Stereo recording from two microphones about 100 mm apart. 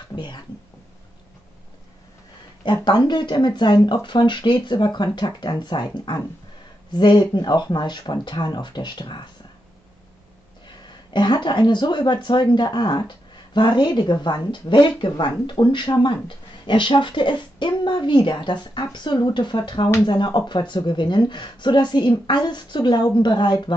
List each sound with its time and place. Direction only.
0.1 s speech: 50° left (ahead or behind)
2.6 s speech: 50° left (ahead or behind)
11.1 s speech: 50° left (ahead or behind)